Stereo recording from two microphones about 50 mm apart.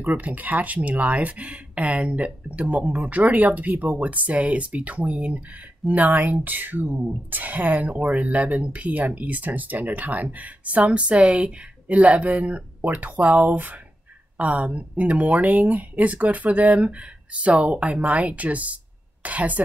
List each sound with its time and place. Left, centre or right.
0.0 s a woman's voice: right